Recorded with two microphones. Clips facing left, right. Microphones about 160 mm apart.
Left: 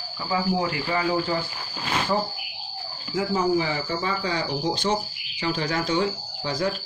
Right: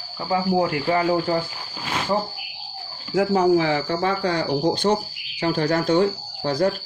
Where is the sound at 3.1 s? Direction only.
70° right (ahead or behind); by 6.6 s 55° right (ahead or behind).